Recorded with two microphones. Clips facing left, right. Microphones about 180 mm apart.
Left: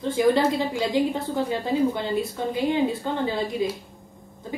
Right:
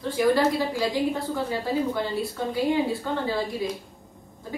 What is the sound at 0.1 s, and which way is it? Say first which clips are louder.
Speech: left 1 dB; 25° left (ahead or behind).